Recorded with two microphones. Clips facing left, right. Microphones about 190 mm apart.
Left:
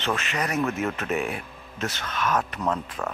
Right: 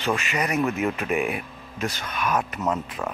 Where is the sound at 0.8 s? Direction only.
10° right (ahead or behind).